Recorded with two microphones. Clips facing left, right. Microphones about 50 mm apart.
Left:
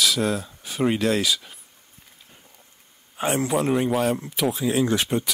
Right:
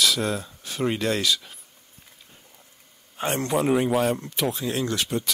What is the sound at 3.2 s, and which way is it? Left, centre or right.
Speech, centre.